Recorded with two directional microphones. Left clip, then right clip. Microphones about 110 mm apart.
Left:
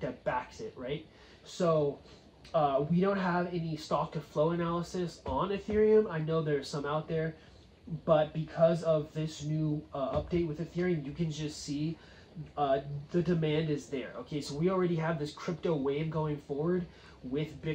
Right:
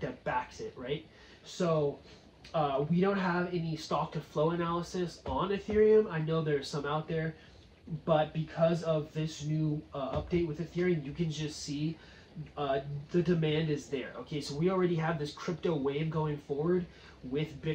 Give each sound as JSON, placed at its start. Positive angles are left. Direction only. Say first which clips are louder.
{"t": 0.0, "sound": "a sound", "louder": "even", "side_deg": 15}
{"t": 1.6, "sound": "speech", "louder": "left 2 dB", "side_deg": 15}
{"t": 12.5, "sound": "speech", "louder": "left 3 dB", "side_deg": 15}